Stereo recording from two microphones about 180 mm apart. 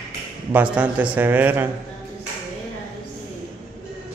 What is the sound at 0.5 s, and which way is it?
Speech, 10° right (ahead or behind).